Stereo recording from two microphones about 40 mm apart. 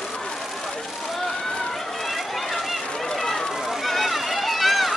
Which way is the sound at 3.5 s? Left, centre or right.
Centre.